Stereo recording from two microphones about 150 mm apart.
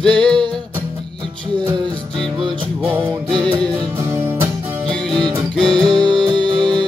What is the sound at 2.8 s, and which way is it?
Music, 15° right (ahead or behind).